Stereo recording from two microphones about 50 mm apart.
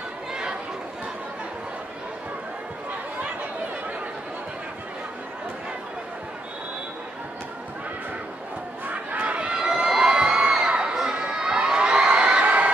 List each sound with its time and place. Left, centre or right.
0.3 s chatter: centre
8.8 s crowd: right